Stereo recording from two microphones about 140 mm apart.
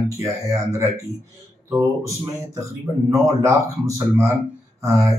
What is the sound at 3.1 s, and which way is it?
Speech, 20° right (ahead or behind).